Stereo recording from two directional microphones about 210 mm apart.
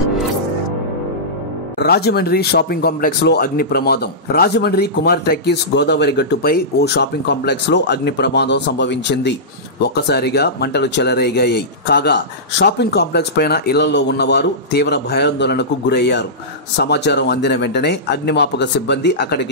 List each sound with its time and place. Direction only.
1.8 s speech: 50° left (ahead or behind)